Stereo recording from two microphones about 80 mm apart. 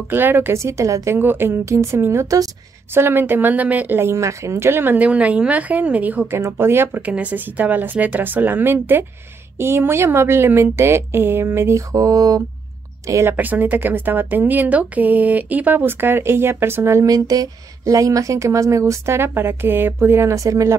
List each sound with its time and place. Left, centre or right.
0.1 s speech: right
1.1 s speech: right
2.2 s a sound: right
2.9 s speech: right
6.4 s speech: right
7.0 s speech: centre
11.9 s a sound: right
13.0 s speech: right
13.3 s speech: right
17.1 s speech: right